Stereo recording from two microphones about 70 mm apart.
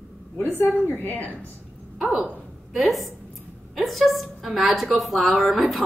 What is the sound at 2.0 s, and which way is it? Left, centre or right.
A woman's voice, centre.